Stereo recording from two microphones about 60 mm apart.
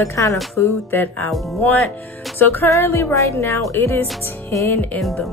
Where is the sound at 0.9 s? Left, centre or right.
Left.